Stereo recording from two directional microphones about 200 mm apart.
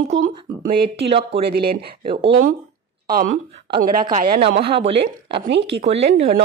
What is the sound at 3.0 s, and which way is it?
Speech, 45° right (ahead or behind).